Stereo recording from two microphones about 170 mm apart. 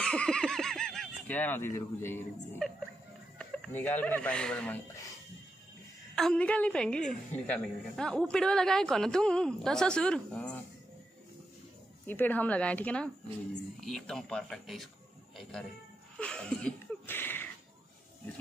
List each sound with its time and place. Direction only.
0.0 s a sound: 5° left (ahead or behind)
2.0 s speech: 15° left (ahead or behind)
3.3 s speech: 5° left (ahead or behind)
6.1 s a woman's voice: 5° left (ahead or behind)
12.1 s a woman's voice: 10° left (ahead or behind)
16.2 s a sound: 5° left (ahead or behind)